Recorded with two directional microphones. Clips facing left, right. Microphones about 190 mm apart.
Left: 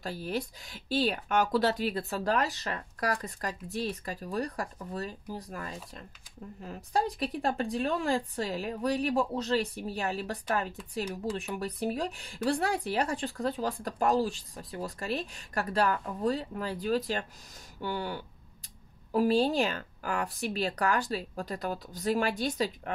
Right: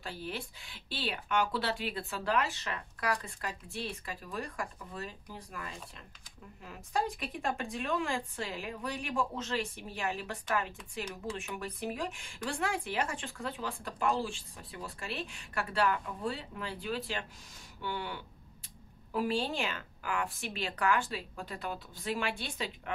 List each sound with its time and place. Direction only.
0.0 s speech: 40° left (ahead or behind)